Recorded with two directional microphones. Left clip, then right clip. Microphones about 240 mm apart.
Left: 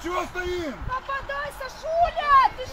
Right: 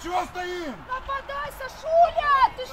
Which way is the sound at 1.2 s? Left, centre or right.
Right.